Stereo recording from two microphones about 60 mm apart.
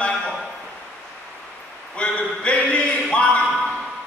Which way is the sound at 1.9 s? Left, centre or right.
Centre.